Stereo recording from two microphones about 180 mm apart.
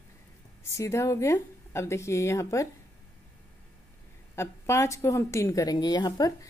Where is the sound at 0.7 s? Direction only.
15° left (ahead or behind).